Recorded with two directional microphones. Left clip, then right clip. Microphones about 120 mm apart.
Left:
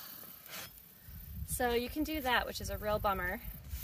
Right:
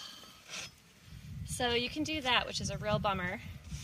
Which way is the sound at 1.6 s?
45° left (ahead or behind).